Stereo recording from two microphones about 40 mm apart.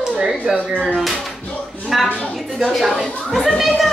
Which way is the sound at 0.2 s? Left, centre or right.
Centre.